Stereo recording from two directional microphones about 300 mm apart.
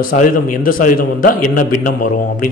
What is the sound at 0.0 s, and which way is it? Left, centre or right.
A man's voice, left.